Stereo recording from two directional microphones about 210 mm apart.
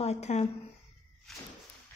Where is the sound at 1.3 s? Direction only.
Centre (ahead or behind).